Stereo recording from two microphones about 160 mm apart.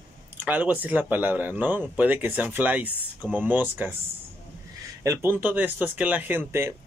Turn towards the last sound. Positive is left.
turn(degrees=-15)  # may be behind; listen again after turning